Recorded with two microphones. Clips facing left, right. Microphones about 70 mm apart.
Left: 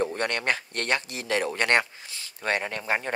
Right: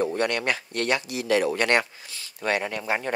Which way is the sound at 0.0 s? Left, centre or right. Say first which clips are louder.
Right 2 dB; left.